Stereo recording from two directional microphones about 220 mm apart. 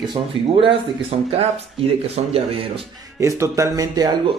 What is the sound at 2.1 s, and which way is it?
Speech, 25° right (ahead or behind).